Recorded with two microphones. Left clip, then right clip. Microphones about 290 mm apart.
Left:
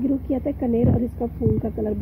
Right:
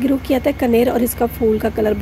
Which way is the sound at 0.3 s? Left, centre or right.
Right.